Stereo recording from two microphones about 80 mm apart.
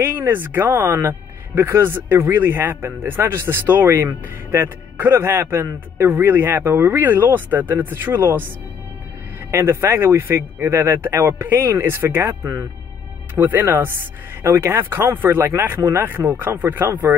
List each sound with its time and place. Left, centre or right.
0.0 s speech: right
9.5 s speech: right
13.3 s speech: right